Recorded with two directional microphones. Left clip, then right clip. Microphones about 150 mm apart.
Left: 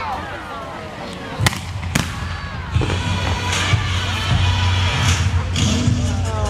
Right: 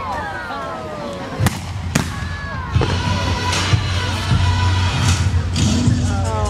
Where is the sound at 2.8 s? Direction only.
Centre (ahead or behind).